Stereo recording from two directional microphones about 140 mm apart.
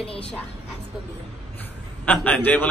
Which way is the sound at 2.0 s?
10° left (ahead or behind).